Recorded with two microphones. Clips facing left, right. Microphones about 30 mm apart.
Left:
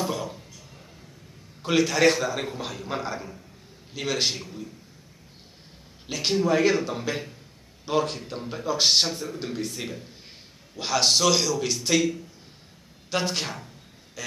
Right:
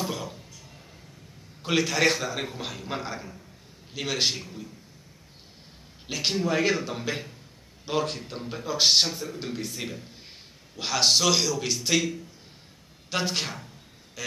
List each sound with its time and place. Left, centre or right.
0.0 s a sound: centre
1.6 s a man's voice: centre
6.0 s a man's voice: centre